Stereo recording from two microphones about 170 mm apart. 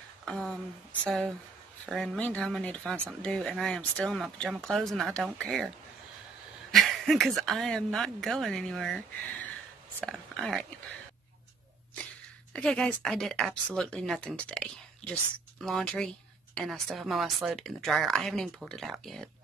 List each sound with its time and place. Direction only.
0.2 s speech: 5° left (ahead or behind)
6.7 s speech: centre (ahead or behind)
10.0 s speech: centre (ahead or behind)
12.5 s speech: 5° left (ahead or behind)